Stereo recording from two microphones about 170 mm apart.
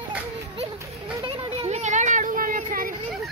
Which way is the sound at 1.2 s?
30° right (ahead or behind).